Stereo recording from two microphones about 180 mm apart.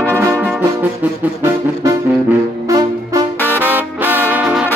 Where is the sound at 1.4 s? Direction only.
20° right (ahead or behind).